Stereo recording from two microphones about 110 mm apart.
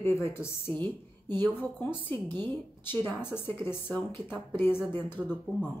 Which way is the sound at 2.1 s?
40° right (ahead or behind).